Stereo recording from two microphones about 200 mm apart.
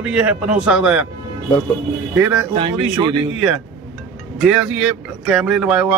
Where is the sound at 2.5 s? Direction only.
25° right (ahead or behind).